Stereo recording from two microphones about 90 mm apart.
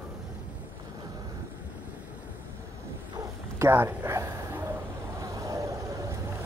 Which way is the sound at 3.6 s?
25° right (ahead or behind).